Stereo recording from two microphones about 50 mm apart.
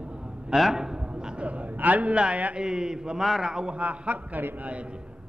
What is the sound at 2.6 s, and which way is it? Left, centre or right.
A man's voice, centre.